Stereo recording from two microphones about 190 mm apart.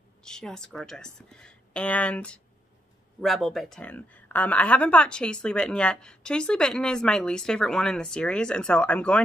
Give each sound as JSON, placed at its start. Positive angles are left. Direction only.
{"t": 0.2, "sound": "a woman's voice", "side_deg": 5}